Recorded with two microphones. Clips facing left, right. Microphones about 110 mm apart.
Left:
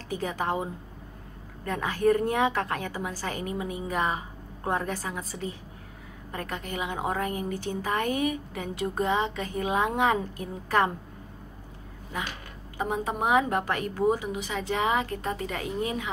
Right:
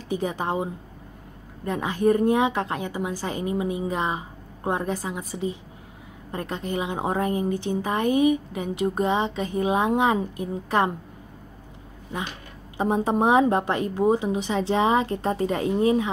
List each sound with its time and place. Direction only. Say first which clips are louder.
0.1 s a woman's voice: right 3 dB; 20° right (ahead or behind)
12.7 s a woman's voice: right 7 dB; 30° right (ahead or behind)